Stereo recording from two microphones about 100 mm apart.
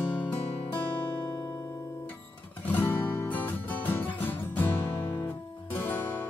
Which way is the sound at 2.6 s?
15° left (ahead or behind).